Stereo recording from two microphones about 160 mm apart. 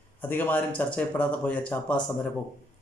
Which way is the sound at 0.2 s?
10° left (ahead or behind).